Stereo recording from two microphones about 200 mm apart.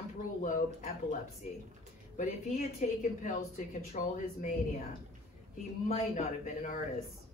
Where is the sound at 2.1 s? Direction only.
40° left (ahead or behind).